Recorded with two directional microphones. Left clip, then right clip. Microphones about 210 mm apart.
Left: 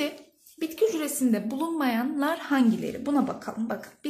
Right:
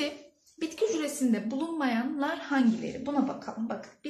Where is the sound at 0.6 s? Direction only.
30° left (ahead or behind).